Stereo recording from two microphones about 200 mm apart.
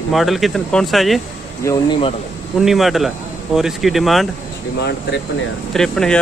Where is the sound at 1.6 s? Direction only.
20° left (ahead or behind).